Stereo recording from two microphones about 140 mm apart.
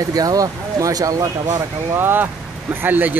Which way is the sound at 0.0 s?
25° right (ahead or behind).